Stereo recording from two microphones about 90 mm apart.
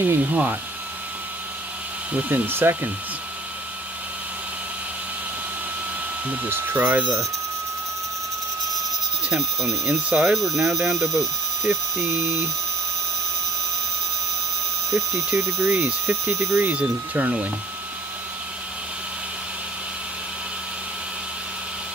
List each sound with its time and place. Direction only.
0.0 s speech: 20° right (ahead or behind)
2.1 s speech: 20° right (ahead or behind)
6.2 s speech: 20° right (ahead or behind)
9.3 s speech: centre (ahead or behind)
15.2 s speech: centre (ahead or behind)
15.7 s speech: 30° right (ahead or behind)
16.7 s speech: 15° right (ahead or behind)